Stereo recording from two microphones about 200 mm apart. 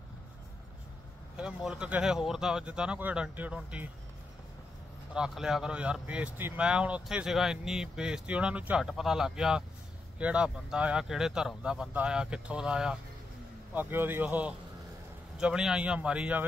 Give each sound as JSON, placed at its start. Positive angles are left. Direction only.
{"t": 1.3, "sound": "speech", "side_deg": -5}
{"t": 5.1, "sound": "a man's voice", "side_deg": -5}